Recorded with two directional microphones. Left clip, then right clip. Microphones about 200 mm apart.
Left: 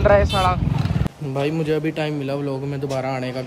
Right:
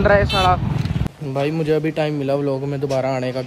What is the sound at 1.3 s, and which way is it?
A man's voice, 10° left (ahead or behind).